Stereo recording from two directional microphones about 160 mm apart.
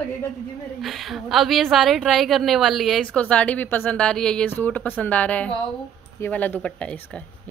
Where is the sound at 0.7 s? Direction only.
Centre (ahead or behind).